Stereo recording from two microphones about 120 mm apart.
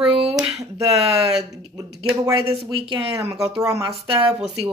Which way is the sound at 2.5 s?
50° right (ahead or behind).